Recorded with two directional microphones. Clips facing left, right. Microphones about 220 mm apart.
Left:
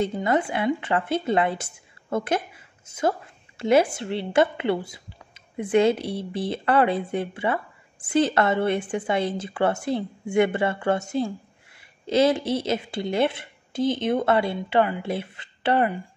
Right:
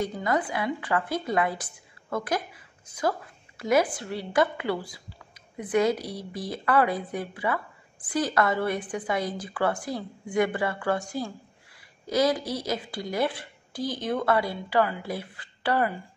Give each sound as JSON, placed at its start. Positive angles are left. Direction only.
{"t": 0.0, "sound": "a woman's voice", "side_deg": 25}